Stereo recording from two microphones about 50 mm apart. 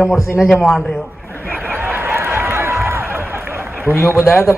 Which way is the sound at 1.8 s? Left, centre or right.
Right.